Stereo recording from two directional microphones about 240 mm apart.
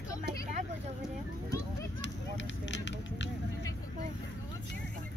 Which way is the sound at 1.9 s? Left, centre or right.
Left.